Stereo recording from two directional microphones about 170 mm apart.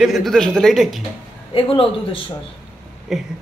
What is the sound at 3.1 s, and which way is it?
Speech, centre (ahead or behind).